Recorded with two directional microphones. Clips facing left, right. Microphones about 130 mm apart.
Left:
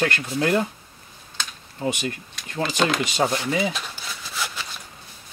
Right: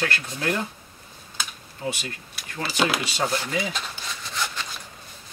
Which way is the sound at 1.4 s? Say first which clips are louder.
Even; 5° right (ahead or behind).